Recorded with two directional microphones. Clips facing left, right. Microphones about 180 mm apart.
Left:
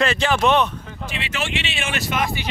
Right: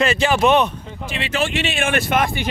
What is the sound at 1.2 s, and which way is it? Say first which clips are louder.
Speech: right 6 dB; 35° right (ahead or behind).